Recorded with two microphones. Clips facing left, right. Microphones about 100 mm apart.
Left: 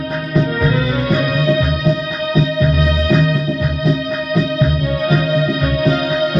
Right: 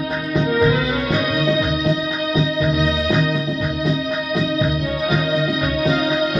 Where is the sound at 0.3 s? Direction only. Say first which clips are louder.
Even; 15° right (ahead or behind).